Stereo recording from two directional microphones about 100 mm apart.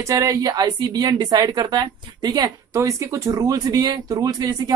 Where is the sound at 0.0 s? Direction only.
30° right (ahead or behind).